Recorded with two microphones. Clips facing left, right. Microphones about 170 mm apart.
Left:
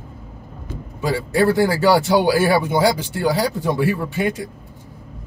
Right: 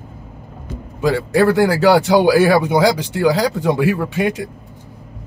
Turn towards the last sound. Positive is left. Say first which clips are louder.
# right 3 dB
turn(degrees=-75)  # may be behind; listen again after turning